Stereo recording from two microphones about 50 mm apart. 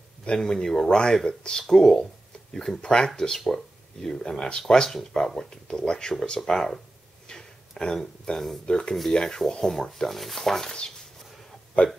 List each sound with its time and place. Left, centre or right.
0.5 s speech: centre
11.8 s speech: left